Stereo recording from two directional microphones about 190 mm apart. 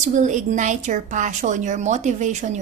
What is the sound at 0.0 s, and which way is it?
A woman's voice, 40° right (ahead or behind).